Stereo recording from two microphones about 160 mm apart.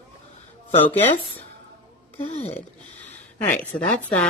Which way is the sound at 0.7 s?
40° left (ahead or behind).